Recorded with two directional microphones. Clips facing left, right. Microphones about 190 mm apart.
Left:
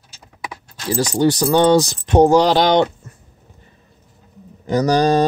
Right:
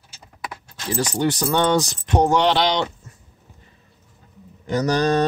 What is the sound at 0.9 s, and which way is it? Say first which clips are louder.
Speech: left 5 dB; 35° left (ahead or behind).